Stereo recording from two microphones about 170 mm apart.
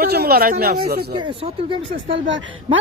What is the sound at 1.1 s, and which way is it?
Speech, 30° right (ahead or behind).